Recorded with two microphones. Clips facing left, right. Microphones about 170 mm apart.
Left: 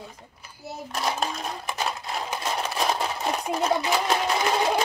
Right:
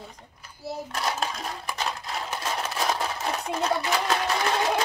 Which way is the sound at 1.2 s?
Centre (ahead or behind).